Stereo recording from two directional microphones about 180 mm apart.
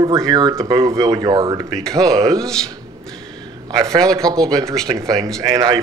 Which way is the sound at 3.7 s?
20° right (ahead or behind).